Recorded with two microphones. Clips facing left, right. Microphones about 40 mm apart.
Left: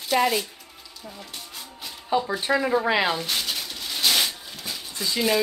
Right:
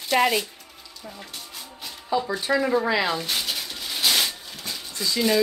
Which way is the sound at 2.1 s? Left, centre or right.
Left.